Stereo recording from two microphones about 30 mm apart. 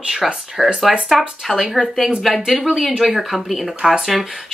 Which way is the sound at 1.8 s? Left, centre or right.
Centre.